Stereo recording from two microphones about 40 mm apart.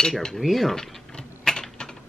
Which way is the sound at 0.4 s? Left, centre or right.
Centre.